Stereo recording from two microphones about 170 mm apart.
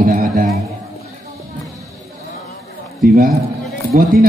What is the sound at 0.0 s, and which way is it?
Music, 50° right (ahead or behind).